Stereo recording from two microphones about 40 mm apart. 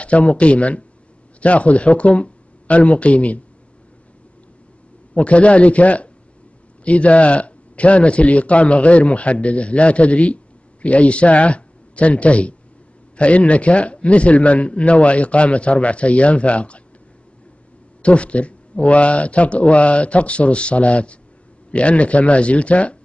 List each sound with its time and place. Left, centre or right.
0.0 s a man's voice: left
5.1 s a man's voice: left
18.0 s a man's voice: left